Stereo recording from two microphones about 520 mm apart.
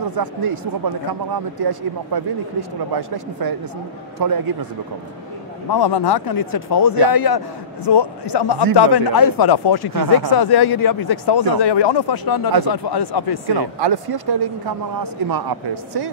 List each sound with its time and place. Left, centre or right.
0.1 s speech: right
5.7 s speech: left
13.6 s speech: right